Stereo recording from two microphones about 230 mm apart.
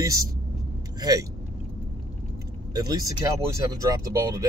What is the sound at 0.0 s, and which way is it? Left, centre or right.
Speech, centre.